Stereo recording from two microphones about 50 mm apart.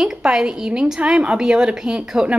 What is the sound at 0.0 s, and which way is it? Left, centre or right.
A woman's voice, centre.